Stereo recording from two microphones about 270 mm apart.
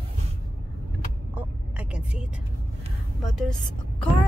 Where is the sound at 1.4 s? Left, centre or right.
Centre.